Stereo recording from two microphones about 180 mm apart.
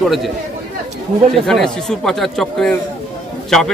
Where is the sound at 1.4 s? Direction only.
5° left (ahead or behind).